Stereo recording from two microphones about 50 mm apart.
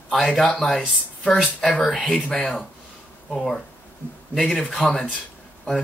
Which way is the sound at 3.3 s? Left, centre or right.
Centre.